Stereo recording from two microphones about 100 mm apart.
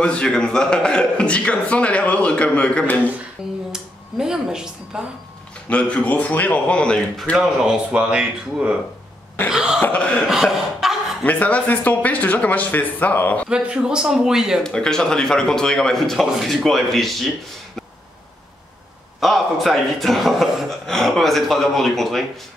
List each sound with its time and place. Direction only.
0.0 s a man's voice: 10° left (ahead or behind)
3.4 s speech: 5° right (ahead or behind)
5.7 s a man's voice: 10° left (ahead or behind)
7.3 s a man's voice: 5° right (ahead or behind)
9.8 s a man's voice: 15° left (ahead or behind)
10.2 s cough: 5° right (ahead or behind)
11.2 s a man's voice: 15° left (ahead or behind)
13.5 s speech: 10° right (ahead or behind)
14.6 s a man's voice: 5° left (ahead or behind)
19.1 s a man's voice: centre (ahead or behind)